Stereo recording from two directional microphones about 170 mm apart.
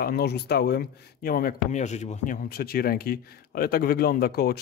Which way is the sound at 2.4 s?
65° left (ahead or behind).